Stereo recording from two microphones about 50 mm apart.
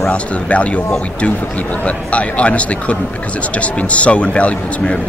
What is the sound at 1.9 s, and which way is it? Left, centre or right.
Speech, left.